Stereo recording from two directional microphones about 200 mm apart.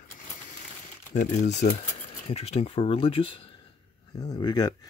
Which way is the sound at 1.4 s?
35° left (ahead or behind).